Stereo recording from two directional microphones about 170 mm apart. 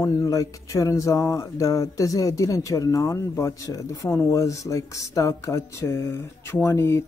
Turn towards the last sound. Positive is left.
turn(degrees=15)  # may be behind; listen again after turning